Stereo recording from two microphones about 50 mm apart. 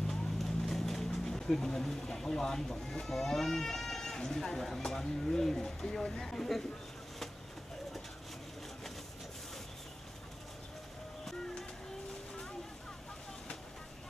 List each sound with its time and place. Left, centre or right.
0.0 s speech: centre